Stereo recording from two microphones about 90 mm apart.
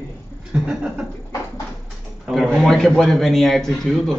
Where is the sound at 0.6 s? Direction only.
10° right (ahead or behind).